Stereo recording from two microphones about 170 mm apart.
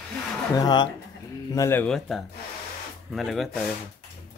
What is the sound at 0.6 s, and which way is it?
Speech, 25° left (ahead or behind).